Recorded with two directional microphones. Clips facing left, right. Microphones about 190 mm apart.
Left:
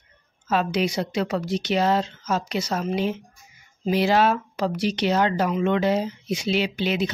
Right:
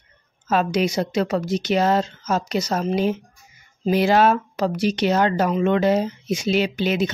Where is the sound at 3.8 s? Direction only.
50° right (ahead or behind).